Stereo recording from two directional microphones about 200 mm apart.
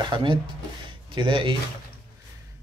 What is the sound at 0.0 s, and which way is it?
Speech, 25° right (ahead or behind).